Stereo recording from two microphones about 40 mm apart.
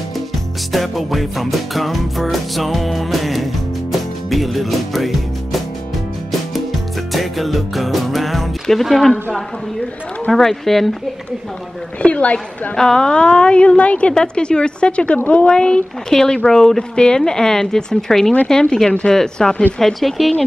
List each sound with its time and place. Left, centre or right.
0.7 s music: centre
7.1 s music: centre
8.8 s speech: centre
10.3 s speech: centre
12.0 s a woman's voice: left
12.7 s a woman's voice: centre
19.8 s music: centre